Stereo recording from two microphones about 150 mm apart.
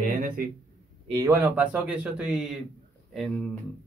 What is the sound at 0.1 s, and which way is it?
Speech, 70° right (ahead or behind).